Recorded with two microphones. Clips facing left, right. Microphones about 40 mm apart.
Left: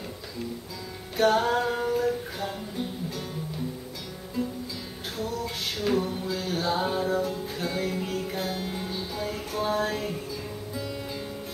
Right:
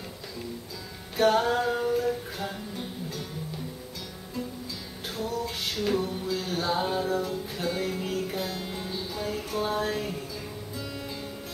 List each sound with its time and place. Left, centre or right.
1.1 s music: centre
4.4 s music: centre
5.1 s a sound: centre
8.5 s music: centre